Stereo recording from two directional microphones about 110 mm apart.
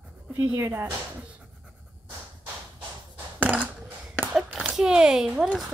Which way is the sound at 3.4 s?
10° right (ahead or behind).